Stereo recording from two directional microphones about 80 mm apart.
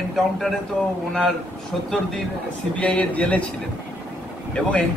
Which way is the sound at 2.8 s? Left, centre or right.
Centre.